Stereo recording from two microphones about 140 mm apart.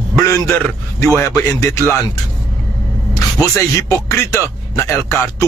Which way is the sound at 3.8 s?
20° left (ahead or behind).